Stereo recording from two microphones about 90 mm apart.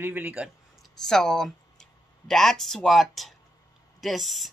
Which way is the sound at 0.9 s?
5° left (ahead or behind).